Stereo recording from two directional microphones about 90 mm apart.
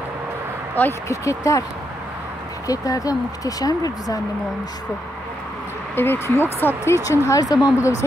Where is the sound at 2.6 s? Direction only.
40° left (ahead or behind).